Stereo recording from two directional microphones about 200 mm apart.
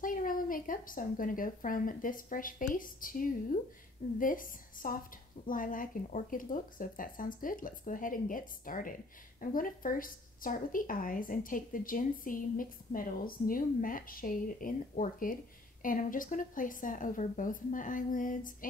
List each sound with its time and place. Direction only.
0.0 s a woman's voice: 45° left (ahead or behind)